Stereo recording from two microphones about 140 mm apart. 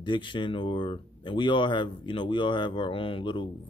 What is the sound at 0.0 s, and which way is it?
Speech, 35° left (ahead or behind).